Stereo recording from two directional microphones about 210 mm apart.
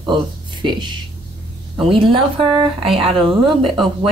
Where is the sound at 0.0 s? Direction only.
20° right (ahead or behind).